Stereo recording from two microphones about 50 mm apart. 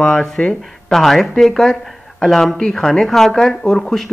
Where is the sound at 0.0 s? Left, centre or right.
Centre.